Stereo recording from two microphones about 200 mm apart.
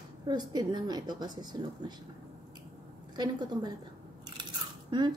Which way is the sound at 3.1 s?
20° right (ahead or behind).